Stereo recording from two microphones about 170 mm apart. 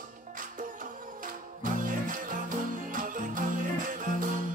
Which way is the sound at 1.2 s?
50° right (ahead or behind).